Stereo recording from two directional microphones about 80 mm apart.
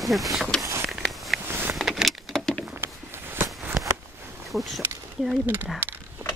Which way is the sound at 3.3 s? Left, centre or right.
Right.